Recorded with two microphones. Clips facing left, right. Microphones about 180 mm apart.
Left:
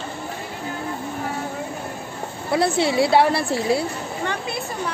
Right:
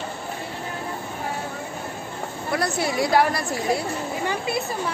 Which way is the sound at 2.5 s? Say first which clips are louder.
Left 5 dB; 25° left (ahead or behind).